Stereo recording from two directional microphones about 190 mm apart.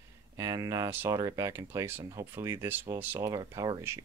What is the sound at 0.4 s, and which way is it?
Speech, 15° right (ahead or behind).